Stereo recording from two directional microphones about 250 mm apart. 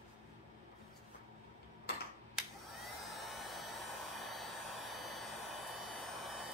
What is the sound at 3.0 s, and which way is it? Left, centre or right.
Vehicle, centre.